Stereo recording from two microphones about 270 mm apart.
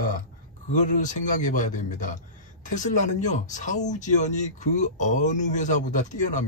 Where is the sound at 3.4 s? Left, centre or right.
Left.